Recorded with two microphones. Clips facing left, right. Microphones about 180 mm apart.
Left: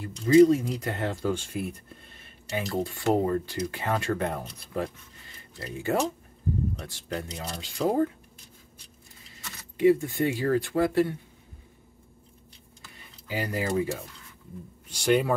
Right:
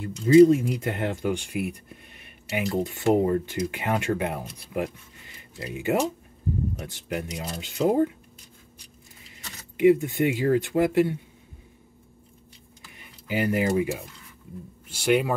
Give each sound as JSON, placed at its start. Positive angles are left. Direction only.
{"t": 0.3, "sound": "speech", "side_deg": -20}
{"t": 9.8, "sound": "speech", "side_deg": -20}
{"t": 12.8, "sound": "a sound", "side_deg": -20}
{"t": 13.7, "sound": "speech", "side_deg": -15}